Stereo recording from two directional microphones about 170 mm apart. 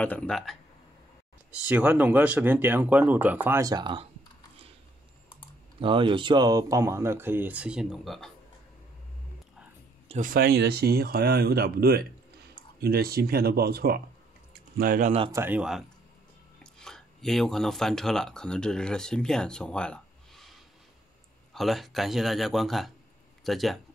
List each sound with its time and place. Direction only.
0.0 s a man's voice: 5° left (ahead or behind)
1.5 s speech: 10° right (ahead or behind); by 4.1 s 30° right (ahead or behind)
5.8 s speech: 30° right (ahead or behind); by 8.3 s centre (ahead or behind)
10.0 s speech: 45° right (ahead or behind); by 14.0 s 65° right (ahead or behind)
14.8 s speech: 55° right (ahead or behind)
15.3 s speech: 10° right (ahead or behind)
16.8 s speech: 5° left (ahead or behind)
21.5 s a man's voice: centre (ahead or behind)